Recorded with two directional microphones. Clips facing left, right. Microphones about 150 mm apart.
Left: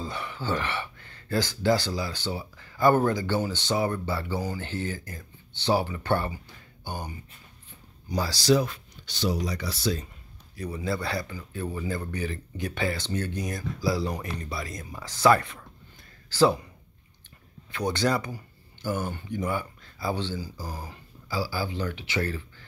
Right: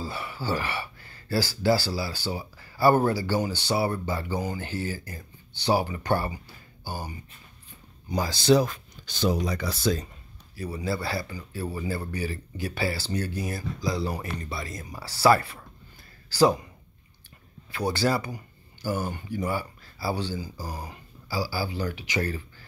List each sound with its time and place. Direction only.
0.0 s speech: 5° right (ahead or behind)
8.5 s speech: 45° right (ahead or behind)
10.5 s speech: 5° right (ahead or behind)
13.7 s speech: 5° left (ahead or behind); by 16.6 s 15° right (ahead or behind)
17.6 s speech: 5° right (ahead or behind)